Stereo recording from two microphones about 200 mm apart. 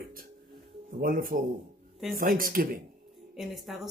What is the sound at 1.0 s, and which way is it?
Speech, 45° right (ahead or behind).